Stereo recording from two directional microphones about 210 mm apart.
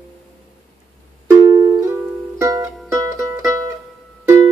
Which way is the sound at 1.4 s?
15° right (ahead or behind).